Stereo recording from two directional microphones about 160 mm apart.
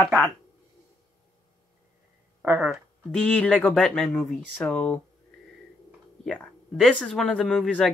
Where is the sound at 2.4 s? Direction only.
5° right (ahead or behind).